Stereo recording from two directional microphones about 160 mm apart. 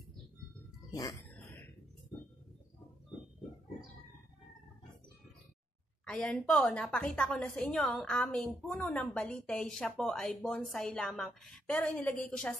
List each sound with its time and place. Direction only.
0.9 s music: 20° left (ahead or behind)
6.0 s a woman's voice: 5° left (ahead or behind)